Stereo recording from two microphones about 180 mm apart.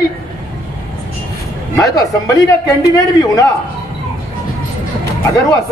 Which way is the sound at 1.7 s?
20° left (ahead or behind).